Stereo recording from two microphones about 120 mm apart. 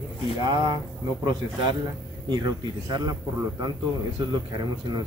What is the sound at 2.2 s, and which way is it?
Speech, 35° right (ahead or behind).